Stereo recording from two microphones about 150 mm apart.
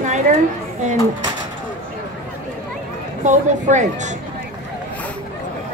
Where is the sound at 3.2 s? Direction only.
55° right (ahead or behind).